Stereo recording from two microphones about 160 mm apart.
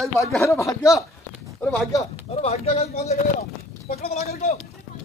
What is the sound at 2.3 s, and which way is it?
Speech, 40° left (ahead or behind).